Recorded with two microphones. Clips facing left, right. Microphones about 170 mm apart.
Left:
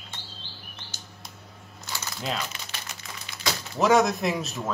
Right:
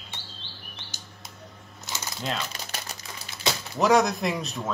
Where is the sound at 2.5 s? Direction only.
35° right (ahead or behind).